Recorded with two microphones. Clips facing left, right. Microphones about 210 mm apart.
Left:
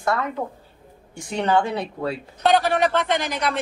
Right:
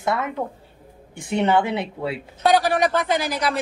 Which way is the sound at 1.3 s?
25° right (ahead or behind).